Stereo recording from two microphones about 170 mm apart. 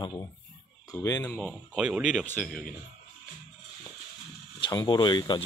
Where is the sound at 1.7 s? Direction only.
5° right (ahead or behind).